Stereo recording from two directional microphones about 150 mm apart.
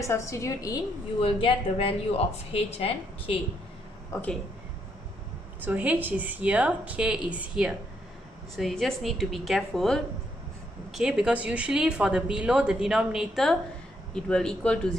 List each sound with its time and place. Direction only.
0.0 s a woman's voice: 20° left (ahead or behind)
1.2 s a woman's voice: 35° left (ahead or behind)
4.1 s a woman's voice: 20° left (ahead or behind)
5.6 s speech: 10° right (ahead or behind); by 15.0 s 5° left (ahead or behind)